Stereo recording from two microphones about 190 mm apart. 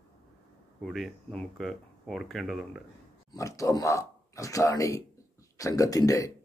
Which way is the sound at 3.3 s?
15° left (ahead or behind).